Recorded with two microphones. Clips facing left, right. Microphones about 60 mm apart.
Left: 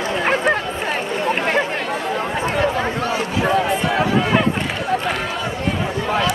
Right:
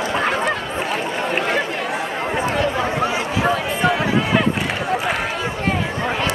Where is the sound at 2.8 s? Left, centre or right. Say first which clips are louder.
Right 1 dB; centre.